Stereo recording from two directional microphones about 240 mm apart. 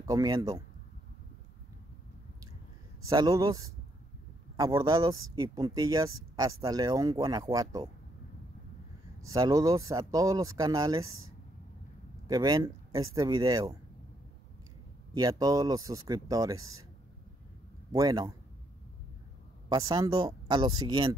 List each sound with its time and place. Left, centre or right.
0.0 s speech: centre
3.1 s speech: centre
9.3 s speech: centre
12.3 s speech: centre
15.1 s speech: centre
17.9 s speech: centre
19.7 s speech: centre